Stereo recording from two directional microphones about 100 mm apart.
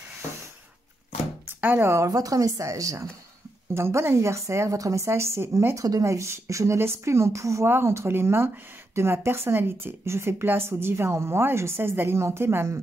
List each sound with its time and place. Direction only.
1.6 s a woman's voice: 25° right (ahead or behind)
5.8 s speech: 35° right (ahead or behind)